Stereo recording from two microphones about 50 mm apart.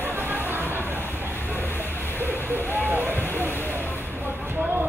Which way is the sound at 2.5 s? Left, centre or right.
Right.